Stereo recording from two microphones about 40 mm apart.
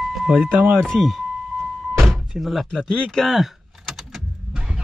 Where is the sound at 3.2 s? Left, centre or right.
Centre.